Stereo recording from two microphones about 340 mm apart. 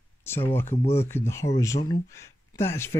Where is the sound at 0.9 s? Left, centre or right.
Centre.